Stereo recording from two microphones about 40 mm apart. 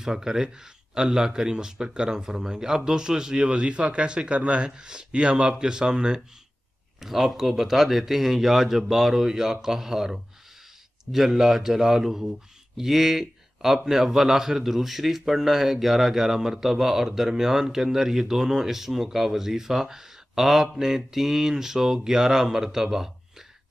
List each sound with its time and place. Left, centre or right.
0.0 s speech: centre
7.0 s speech: centre